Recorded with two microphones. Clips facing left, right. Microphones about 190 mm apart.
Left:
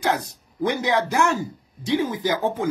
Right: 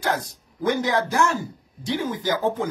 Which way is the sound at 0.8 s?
20° left (ahead or behind).